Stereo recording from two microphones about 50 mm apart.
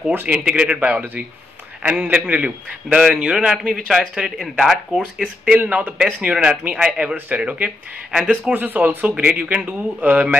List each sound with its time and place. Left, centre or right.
0.3 s speech: right
5.7 s speech: right
7.2 s speech: right
8.1 s speech: centre
8.5 s speech: right